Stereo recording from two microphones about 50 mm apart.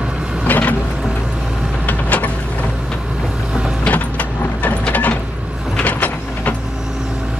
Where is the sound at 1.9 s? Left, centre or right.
Left.